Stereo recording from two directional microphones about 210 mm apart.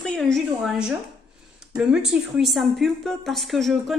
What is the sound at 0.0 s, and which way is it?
A woman's voice, centre (ahead or behind).